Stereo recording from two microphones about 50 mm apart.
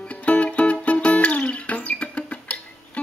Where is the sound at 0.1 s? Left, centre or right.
Left.